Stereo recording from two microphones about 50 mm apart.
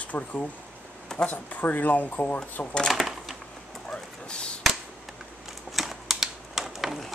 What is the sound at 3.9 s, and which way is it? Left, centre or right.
Vehicle, centre.